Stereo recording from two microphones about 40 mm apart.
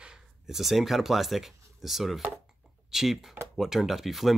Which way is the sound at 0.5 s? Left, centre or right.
Centre.